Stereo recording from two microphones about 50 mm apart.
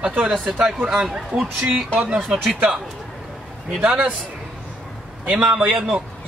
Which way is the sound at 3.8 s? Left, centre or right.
Centre.